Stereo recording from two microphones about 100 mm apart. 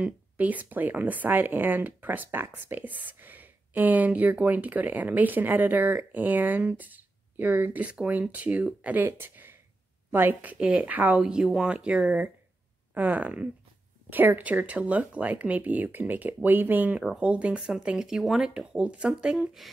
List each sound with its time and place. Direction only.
0.0 s speech: 15° right (ahead or behind)